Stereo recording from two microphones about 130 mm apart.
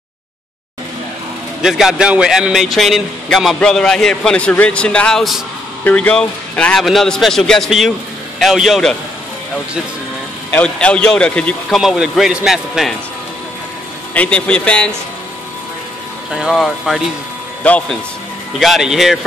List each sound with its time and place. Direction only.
1.6 s a man's voice: 5° right (ahead or behind)
10.5 s speech: 10° left (ahead or behind)
14.1 s a man's voice: 10° left (ahead or behind)
16.3 s speech: 5° right (ahead or behind)
17.6 s a man's voice: 10° left (ahead or behind)
18.6 s speech: centre (ahead or behind)